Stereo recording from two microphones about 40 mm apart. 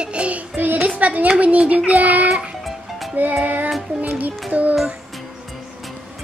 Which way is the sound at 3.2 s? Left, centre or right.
Right.